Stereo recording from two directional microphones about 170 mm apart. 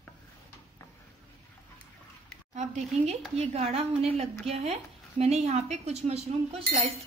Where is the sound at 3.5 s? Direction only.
35° right (ahead or behind).